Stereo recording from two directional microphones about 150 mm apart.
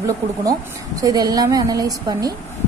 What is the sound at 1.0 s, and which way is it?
A woman's voice, 25° right (ahead or behind).